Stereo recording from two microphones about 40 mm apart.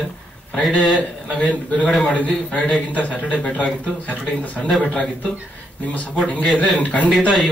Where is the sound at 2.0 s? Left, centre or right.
Left.